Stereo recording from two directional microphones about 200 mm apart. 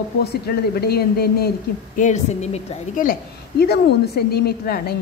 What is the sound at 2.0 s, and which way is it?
A woman's voice, 35° left (ahead or behind).